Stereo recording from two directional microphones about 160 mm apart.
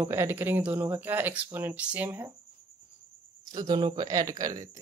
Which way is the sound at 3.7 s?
25° right (ahead or behind).